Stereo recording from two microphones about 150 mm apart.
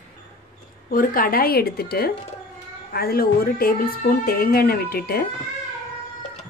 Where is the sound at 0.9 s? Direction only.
70° left (ahead or behind); by 5.3 s 90° left.